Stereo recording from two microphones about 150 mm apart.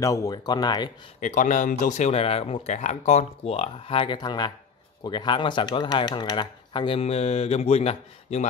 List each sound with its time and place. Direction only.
0.0 s speech: 20° left (ahead or behind)
1.2 s speech: 55° left (ahead or behind)